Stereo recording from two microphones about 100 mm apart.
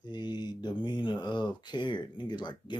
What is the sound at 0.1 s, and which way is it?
Speech, 45° left (ahead or behind).